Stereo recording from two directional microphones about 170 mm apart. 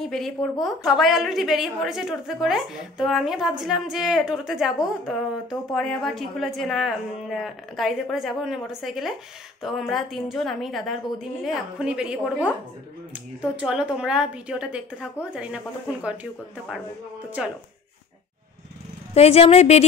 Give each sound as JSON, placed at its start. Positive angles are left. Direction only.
{"t": 0.1, "sound": "a woman's voice", "side_deg": 0}
{"t": 17.4, "sound": "a woman's voice", "side_deg": -5}
{"t": 19.1, "sound": "a woman's voice", "side_deg": 35}